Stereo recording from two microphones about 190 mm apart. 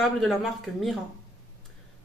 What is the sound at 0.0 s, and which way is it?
Speech, centre (ahead or behind).